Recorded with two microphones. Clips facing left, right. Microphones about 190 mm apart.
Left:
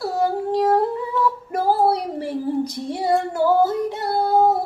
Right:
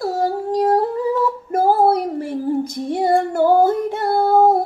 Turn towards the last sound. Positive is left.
turn(degrees=-50)  # may be behind; listen again after turning